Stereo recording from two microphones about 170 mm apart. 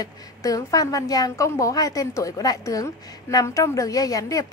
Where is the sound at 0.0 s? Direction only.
20° left (ahead or behind).